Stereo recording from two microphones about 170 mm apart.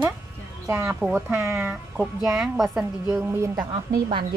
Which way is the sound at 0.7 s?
15° right (ahead or behind).